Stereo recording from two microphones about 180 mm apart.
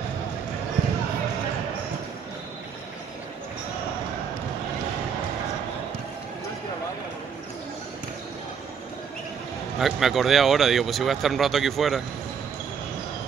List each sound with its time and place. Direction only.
9.8 s speech: centre (ahead or behind)